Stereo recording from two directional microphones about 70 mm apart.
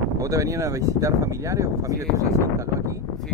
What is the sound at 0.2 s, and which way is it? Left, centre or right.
Speech, right.